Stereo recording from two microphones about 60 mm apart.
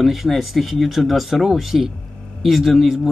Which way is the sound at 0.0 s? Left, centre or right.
Centre.